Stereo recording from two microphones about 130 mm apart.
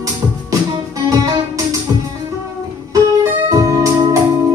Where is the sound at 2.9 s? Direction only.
25° right (ahead or behind).